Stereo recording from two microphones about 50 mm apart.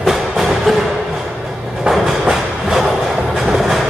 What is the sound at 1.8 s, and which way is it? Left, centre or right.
Train, centre.